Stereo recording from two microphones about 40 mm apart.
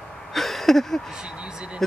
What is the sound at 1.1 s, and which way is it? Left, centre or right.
Speech, right.